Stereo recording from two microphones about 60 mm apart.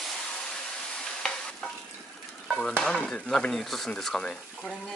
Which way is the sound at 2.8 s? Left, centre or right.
Centre.